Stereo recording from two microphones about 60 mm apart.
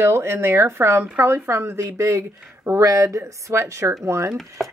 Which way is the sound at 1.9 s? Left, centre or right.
Right.